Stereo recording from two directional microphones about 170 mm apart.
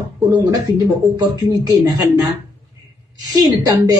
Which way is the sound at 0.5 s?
20° right (ahead or behind).